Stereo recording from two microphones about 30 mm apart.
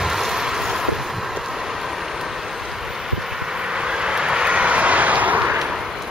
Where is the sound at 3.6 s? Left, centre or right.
Right.